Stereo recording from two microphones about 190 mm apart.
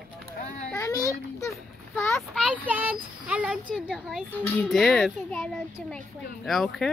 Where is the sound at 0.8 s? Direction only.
15° left (ahead or behind).